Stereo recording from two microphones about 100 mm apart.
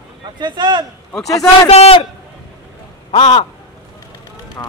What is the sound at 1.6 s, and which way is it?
Speech, 90° left.